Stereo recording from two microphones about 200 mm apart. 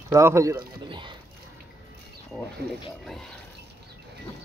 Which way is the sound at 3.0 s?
Centre (ahead or behind).